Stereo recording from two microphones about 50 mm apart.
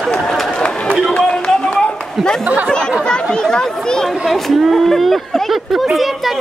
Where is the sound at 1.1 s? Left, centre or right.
Centre.